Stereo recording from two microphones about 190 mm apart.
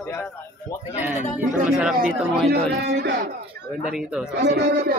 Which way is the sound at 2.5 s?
60° right (ahead or behind).